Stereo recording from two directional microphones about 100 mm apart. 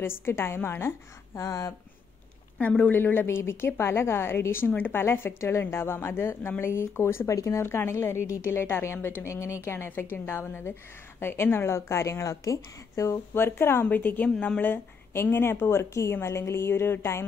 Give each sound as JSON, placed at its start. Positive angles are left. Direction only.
{"t": 0.0, "sound": "a woman's voice", "side_deg": 25}
{"t": 2.6, "sound": "a woman's voice", "side_deg": 15}
{"t": 14.3, "sound": "speech", "side_deg": 5}
{"t": 14.6, "sound": "a woman's voice", "side_deg": 20}